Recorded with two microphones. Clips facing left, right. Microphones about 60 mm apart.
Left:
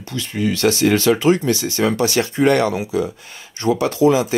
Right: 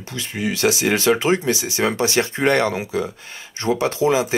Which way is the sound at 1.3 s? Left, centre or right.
Centre.